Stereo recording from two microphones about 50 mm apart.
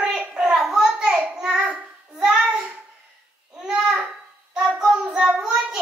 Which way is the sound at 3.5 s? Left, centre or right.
Centre.